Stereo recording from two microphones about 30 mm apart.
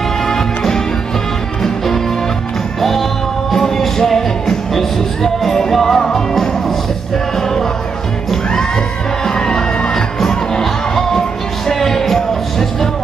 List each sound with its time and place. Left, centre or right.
0.3 s music: centre
2.8 s music: centre
9.2 s music: left